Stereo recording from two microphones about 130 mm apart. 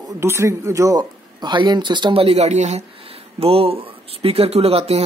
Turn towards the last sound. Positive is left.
turn(degrees=-50)  # may be behind; listen again after turning